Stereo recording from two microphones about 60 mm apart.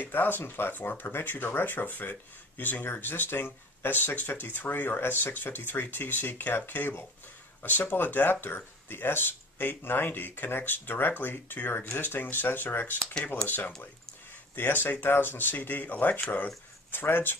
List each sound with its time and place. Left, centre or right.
0.0 s speech: left